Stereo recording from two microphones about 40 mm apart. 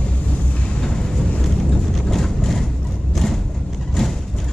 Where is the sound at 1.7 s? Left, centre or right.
Centre.